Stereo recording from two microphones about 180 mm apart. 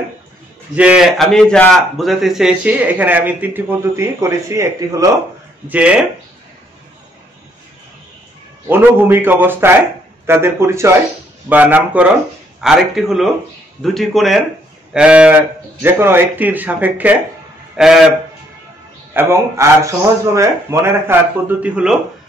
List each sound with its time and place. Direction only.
0.7 s a man's voice: 5° right (ahead or behind)
5.7 s a man's voice: 5° right (ahead or behind)
8.6 s a man's voice: 10° right (ahead or behind)
19.1 s a man's voice: 15° right (ahead or behind)